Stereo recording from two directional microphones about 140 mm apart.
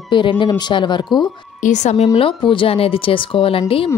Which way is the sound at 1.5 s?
60° left (ahead or behind).